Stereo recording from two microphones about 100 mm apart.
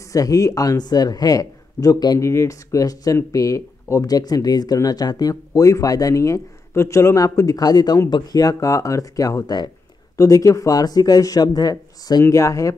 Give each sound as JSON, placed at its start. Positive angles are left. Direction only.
{"t": 0.1, "sound": "speech", "side_deg": 35}